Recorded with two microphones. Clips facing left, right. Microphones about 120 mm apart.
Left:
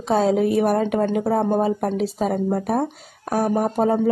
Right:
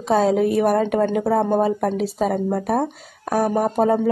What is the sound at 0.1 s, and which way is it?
Speech, 45° right (ahead or behind).